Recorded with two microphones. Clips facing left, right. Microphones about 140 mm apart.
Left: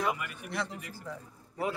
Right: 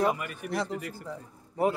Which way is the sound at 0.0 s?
40° right (ahead or behind).